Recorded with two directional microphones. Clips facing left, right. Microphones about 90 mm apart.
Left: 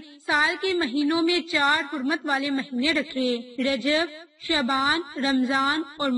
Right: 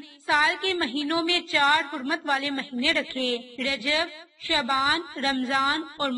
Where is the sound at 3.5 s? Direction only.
35° left (ahead or behind).